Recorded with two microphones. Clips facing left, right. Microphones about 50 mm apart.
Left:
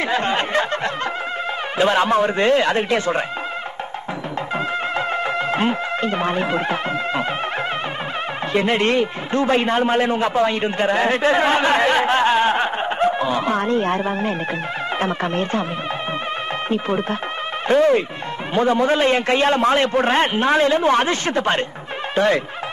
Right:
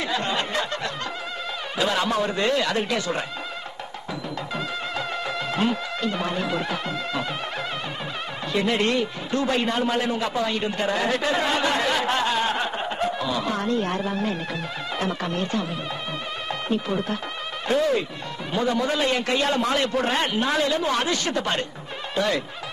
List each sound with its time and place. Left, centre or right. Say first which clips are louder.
0.0 s a sound: left 6 dB; left
1.8 s a man's voice: left 7 dB; left
4.9 s music: left 6 dB; left
8.5 s a man's voice: left 5 dB; left
16.6 s a man's voice: left 3 dB; left